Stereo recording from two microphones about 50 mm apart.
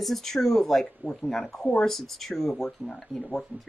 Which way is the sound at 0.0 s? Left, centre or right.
Centre.